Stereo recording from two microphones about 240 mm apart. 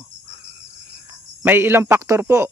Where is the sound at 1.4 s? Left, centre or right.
Centre.